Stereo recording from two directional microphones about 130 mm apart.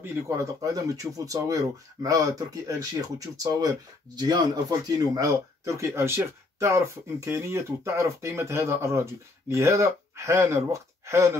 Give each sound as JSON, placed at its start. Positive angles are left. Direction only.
{"t": 0.0, "sound": "speech", "side_deg": -20}